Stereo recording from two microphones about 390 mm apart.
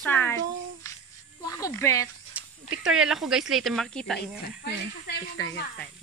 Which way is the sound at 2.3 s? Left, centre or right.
Centre.